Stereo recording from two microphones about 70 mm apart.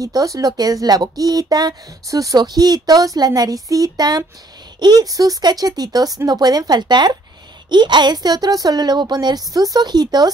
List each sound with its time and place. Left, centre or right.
0.0 s speech: right
2.3 s speech: right